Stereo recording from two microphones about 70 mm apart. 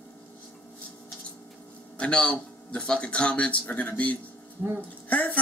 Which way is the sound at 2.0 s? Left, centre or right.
Centre.